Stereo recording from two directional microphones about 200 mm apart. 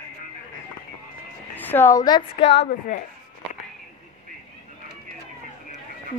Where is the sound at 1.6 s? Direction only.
10° left (ahead or behind); by 3.0 s 35° left (ahead or behind).